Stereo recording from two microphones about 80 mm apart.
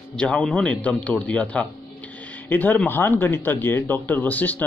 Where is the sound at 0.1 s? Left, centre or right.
Centre.